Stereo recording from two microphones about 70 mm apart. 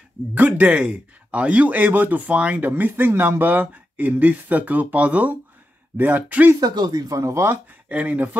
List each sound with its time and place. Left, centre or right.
0.3 s speech: right
6.6 s speech: right
7.1 s speech: right
7.4 s speech: right